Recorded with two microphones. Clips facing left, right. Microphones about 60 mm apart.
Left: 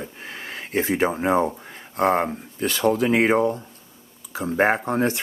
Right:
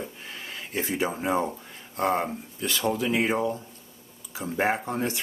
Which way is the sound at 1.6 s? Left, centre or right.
Left.